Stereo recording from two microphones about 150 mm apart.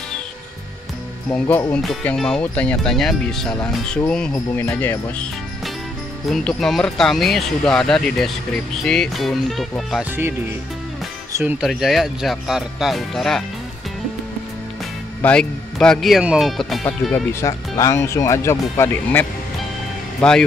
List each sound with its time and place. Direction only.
1.3 s speech: 10° left (ahead or behind)
4.3 s speech: 15° left (ahead or behind)
6.3 s speech: centre (ahead or behind)
11.3 s speech: 10° right (ahead or behind)
15.2 s speech: 5° left (ahead or behind)
17.1 s speech: 15° left (ahead or behind)
20.2 s speech: 5° left (ahead or behind)